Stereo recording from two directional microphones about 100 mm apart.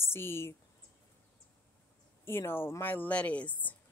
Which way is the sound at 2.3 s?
25° left (ahead or behind).